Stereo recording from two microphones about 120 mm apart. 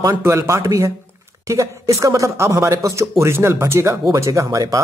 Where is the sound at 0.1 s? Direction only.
25° right (ahead or behind).